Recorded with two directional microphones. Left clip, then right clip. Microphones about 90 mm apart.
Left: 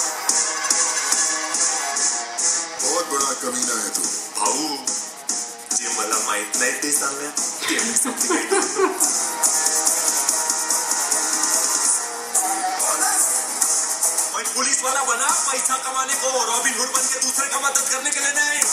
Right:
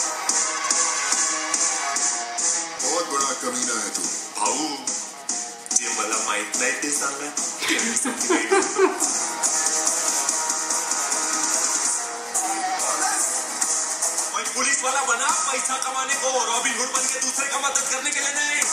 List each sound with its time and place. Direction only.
0.3 s music: 35° left (ahead or behind)
5.7 s music: 35° left (ahead or behind)
7.6 s music: centre (ahead or behind)
8.3 s a sound: centre (ahead or behind)
9.0 s music: 35° left (ahead or behind)
14.6 s speech: 35° left (ahead or behind)